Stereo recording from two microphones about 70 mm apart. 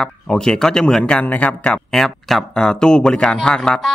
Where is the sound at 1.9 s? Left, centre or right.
Centre.